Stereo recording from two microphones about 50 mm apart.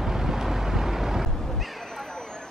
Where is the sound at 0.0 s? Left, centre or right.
Centre.